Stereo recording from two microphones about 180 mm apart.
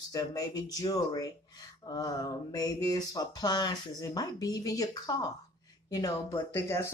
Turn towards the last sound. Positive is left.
turn(degrees=15)  # may be behind; listen again after turning